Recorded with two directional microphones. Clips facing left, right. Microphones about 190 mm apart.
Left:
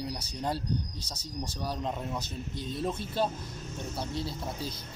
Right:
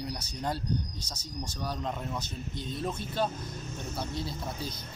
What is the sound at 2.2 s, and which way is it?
Speech, 35° left (ahead or behind).